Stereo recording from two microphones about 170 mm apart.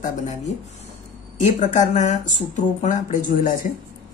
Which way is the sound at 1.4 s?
45° left (ahead or behind).